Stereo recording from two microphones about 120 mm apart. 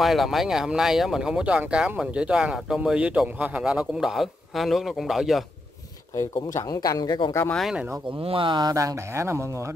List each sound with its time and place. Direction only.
0.0 s speech: centre (ahead or behind)
6.3 s speech: 30° left (ahead or behind)
7.5 s speech: centre (ahead or behind)
8.2 s speech: 50° right (ahead or behind); by 9.8 s 25° right (ahead or behind)